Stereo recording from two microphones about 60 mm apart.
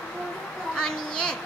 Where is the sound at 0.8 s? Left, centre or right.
Centre.